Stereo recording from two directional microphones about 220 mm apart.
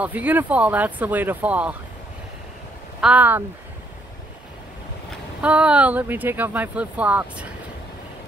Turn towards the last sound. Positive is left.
turn(degrees=-5)  # may be behind; listen again after turning